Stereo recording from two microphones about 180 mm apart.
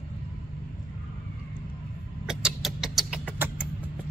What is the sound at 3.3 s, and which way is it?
Vehicle, 10° right (ahead or behind).